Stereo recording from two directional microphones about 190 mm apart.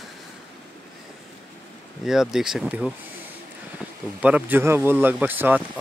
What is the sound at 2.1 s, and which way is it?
Speech, centre (ahead or behind).